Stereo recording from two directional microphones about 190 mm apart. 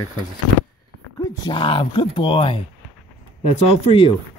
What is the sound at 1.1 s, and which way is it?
Speech, 25° left (ahead or behind).